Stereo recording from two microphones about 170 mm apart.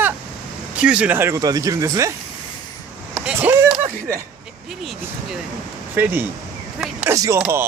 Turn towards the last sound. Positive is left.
turn(degrees=-15)  # may be behind; listen again after turning